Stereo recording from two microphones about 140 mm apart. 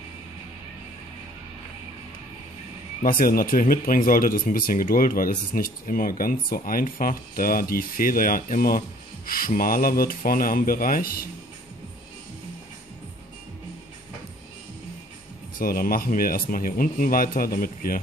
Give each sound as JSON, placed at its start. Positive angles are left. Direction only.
{"t": 3.0, "sound": "speech", "side_deg": 90}
{"t": 15.6, "sound": "speech", "side_deg": 90}